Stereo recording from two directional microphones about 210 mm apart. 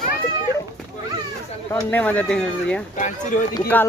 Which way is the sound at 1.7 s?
10° left (ahead or behind).